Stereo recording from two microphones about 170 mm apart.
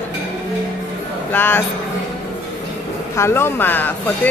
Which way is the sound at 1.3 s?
10° left (ahead or behind).